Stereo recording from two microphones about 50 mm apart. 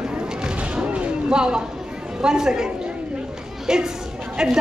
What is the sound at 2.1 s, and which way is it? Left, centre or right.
A woman's voice, centre.